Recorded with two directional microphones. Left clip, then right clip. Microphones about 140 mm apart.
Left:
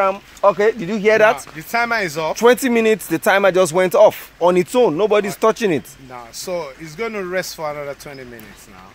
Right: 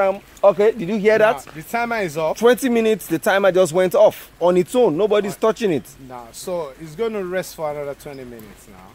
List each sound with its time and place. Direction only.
0.0 s speech: 5° left (ahead or behind)
1.6 s speech: 5° right (ahead or behind)
2.3 s speech: 25° left (ahead or behind)
4.7 s speech: 15° left (ahead or behind)
5.1 s speech: 30° left (ahead or behind)
6.1 s speech: centre (ahead or behind)